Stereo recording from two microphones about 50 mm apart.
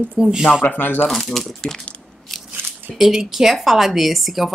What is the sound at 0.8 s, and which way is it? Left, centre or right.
Speech, left.